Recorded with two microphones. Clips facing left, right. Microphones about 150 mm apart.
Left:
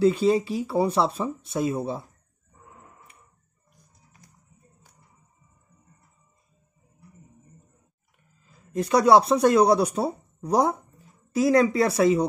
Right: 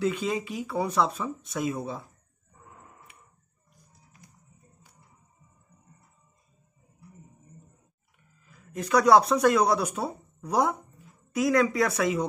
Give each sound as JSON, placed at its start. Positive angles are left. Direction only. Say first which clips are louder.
{"t": 0.0, "sound": "speech", "louder": "left 8 dB", "side_deg": 35}
{"t": 8.4, "sound": "speech", "louder": "left 7 dB", "side_deg": 30}